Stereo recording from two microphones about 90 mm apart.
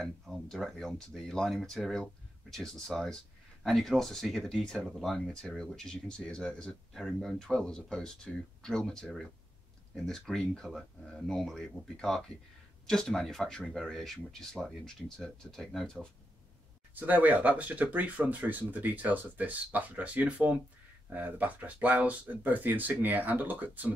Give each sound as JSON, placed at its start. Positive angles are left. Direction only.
{"t": 0.0, "sound": "speech", "side_deg": 0}
{"t": 16.9, "sound": "speech", "side_deg": -20}